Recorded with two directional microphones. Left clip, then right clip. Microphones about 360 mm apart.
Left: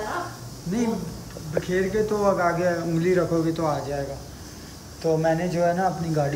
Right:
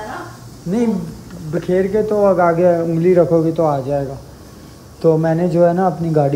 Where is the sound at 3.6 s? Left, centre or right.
Right.